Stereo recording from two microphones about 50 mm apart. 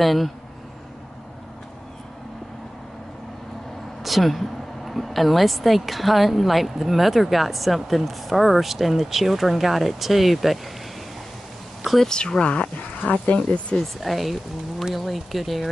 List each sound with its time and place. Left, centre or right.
0.0 s speech: centre
4.0 s speech: centre
11.8 s a sound: centre
12.1 s speech: centre
13.9 s speech: centre